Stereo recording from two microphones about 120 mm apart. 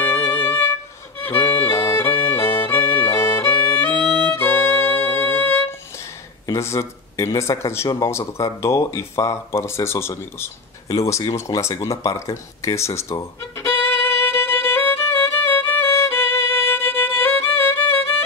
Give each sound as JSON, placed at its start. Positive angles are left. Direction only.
{"t": 0.0, "sound": "music", "side_deg": 20}
{"t": 1.7, "sound": "music", "side_deg": 20}
{"t": 3.0, "sound": "violin", "side_deg": 20}
{"t": 6.4, "sound": "speech", "side_deg": 25}
{"t": 11.3, "sound": "a sound", "side_deg": 25}